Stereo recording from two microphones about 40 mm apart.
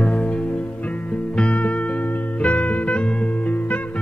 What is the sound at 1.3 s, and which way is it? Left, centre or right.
Music, left.